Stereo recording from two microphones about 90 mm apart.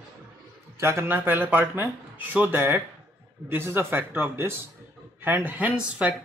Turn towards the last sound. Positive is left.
turn(degrees=-15)  # may be behind; listen again after turning